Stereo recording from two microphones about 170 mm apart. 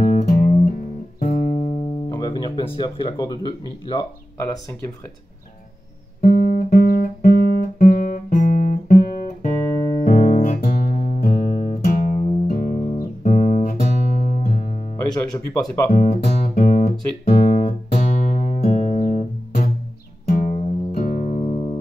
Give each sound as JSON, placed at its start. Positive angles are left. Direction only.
{"t": 0.0, "sound": "music", "side_deg": 50}
{"t": 2.0, "sound": "speech", "side_deg": 25}
{"t": 6.2, "sound": "guitar", "side_deg": 60}
{"t": 11.8, "sound": "music", "side_deg": 55}
{"t": 15.0, "sound": "speech", "side_deg": 25}
{"t": 15.9, "sound": "music", "side_deg": 40}
{"t": 17.2, "sound": "speech", "side_deg": 65}
{"t": 17.5, "sound": "music", "side_deg": 40}